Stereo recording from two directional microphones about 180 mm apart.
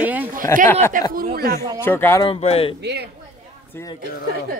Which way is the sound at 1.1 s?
55° right (ahead or behind).